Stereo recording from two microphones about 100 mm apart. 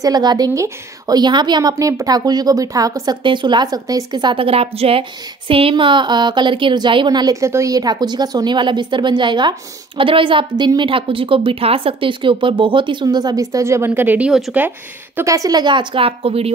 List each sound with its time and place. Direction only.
0.0 s a woman's voice: 45° right (ahead or behind)
3.3 s speech: 50° right (ahead or behind)
3.6 s speech: 40° right (ahead or behind); by 5.0 s 75° right (ahead or behind)
5.5 s speech: 65° right (ahead or behind); by 14.3 s 15° right (ahead or behind)
15.2 s a woman's voice: 35° right (ahead or behind); by 16.5 s 80° right